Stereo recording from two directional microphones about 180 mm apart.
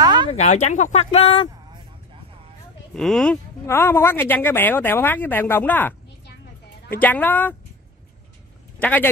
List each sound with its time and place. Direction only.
0.0 s a sound: 25° right (ahead or behind)
0.3 s speech: 40° left (ahead or behind)
2.9 s speech: 5° left (ahead or behind)